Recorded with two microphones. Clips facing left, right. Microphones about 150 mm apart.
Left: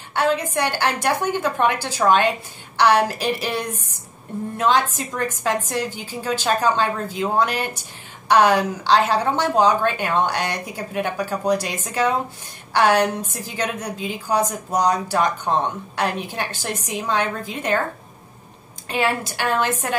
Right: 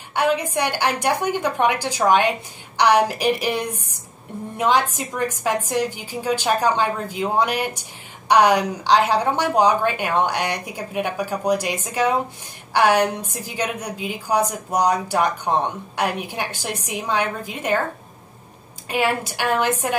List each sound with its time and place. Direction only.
0.1 s a woman's voice: 10° right (ahead or behind)
18.9 s a woman's voice: 10° right (ahead or behind)